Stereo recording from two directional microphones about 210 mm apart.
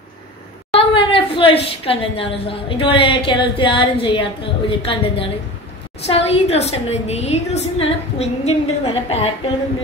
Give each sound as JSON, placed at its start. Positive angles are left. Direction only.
{"t": 0.7, "sound": "a woman's voice", "side_deg": 25}